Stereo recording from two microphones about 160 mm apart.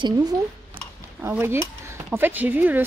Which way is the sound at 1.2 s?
15° right (ahead or behind).